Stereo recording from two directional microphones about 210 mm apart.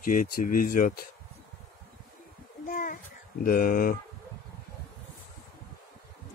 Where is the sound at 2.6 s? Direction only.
40° left (ahead or behind).